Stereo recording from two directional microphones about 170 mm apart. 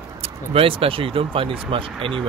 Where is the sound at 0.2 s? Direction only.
35° right (ahead or behind).